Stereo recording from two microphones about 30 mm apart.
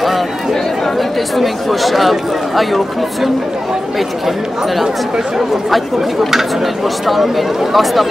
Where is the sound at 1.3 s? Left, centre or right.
Centre.